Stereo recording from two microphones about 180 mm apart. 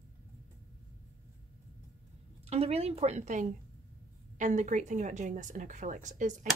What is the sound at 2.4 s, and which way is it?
Speech, 35° right (ahead or behind).